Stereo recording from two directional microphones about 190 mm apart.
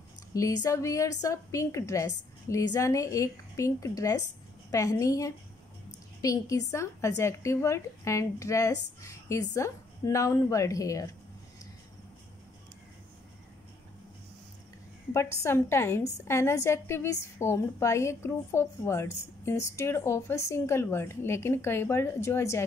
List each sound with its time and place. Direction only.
0.3 s a woman's voice: 20° left (ahead or behind)
15.1 s a woman's voice: 15° left (ahead or behind)